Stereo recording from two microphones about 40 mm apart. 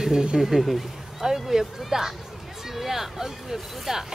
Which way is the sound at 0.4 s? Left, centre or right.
Centre.